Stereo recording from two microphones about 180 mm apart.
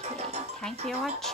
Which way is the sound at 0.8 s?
Centre (ahead or behind).